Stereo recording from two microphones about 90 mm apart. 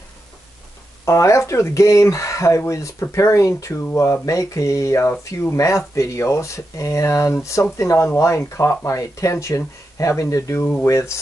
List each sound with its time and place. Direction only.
1.0 s speech: 35° left (ahead or behind)